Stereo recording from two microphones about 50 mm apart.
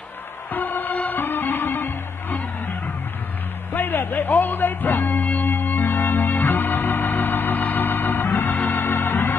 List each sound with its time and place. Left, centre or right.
0.5 s music: left
3.7 s music: left
8.6 s organ: left